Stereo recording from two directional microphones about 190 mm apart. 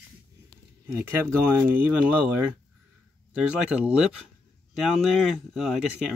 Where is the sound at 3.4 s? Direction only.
5° right (ahead or behind).